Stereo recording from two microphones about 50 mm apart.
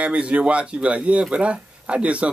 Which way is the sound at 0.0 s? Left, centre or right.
Right.